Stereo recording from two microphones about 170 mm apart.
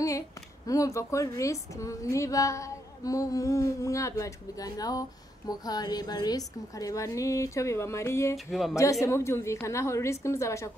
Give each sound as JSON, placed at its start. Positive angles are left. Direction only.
{"t": 0.7, "sound": "a woman's voice", "side_deg": 20}
{"t": 8.5, "sound": "speech", "side_deg": 0}
{"t": 9.0, "sound": "a woman's voice", "side_deg": 15}